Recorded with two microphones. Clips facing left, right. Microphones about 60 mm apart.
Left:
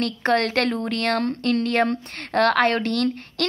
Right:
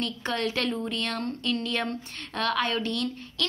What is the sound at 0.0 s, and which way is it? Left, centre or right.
A woman's voice, left.